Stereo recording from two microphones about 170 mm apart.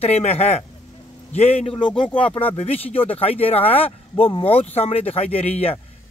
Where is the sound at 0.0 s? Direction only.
40° left (ahead or behind).